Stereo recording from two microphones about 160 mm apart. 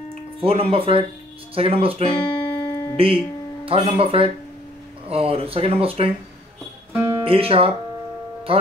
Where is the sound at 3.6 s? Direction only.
35° right (ahead or behind).